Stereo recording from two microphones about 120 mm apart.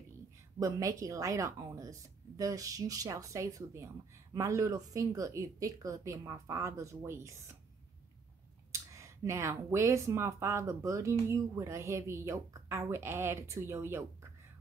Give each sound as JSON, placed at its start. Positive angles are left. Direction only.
{"t": 0.6, "sound": "speech", "side_deg": -30}
{"t": 8.7, "sound": "speech", "side_deg": -25}